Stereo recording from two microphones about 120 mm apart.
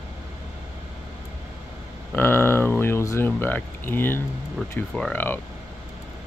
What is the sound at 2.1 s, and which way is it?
Speech, 15° left (ahead or behind).